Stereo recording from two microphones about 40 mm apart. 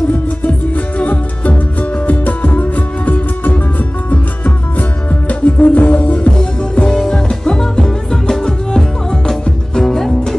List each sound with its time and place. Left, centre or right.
0.5 s music: left; by 10.3 s centre